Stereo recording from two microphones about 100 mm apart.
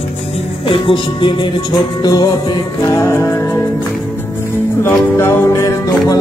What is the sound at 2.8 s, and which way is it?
Music, 30° left (ahead or behind).